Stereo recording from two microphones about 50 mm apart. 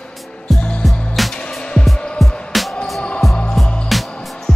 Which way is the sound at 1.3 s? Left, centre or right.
Centre.